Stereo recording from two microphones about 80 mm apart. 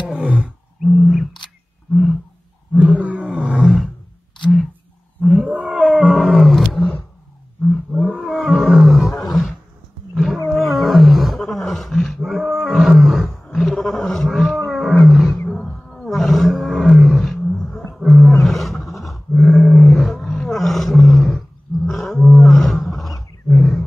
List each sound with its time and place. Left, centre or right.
0.1 s roar: centre
0.8 s a sound: centre
2.7 s roaring cats: centre
3.3 s roar: centre
5.2 s whale vocalization: centre
5.7 s roaring cats: centre
8.0 s roar: centre
10.1 s roaring cats: centre
11.3 s roar: centre
13.0 s wild animals: centre
15.5 s roar: centre
17.9 s roaring cats: centre
18.4 s roar: centre
23.5 s wild animals: centre